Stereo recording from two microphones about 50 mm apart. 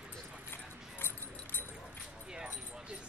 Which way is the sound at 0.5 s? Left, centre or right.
Left.